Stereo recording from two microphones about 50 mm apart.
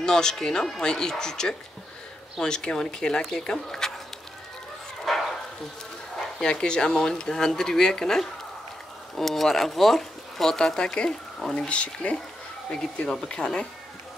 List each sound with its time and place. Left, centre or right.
0.0 s speech: centre
5.0 s bow-wow: centre
6.4 s speech: centre
11.5 s speech: left